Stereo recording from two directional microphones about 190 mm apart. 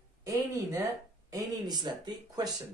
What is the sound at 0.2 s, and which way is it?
Speech, 15° right (ahead or behind).